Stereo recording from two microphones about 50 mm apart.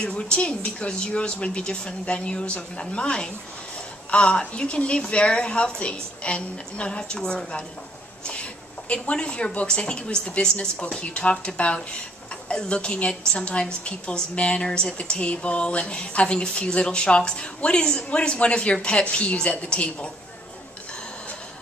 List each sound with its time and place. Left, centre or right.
0.0 s speech: left